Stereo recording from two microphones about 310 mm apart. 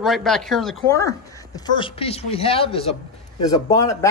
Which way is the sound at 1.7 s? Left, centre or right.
Centre.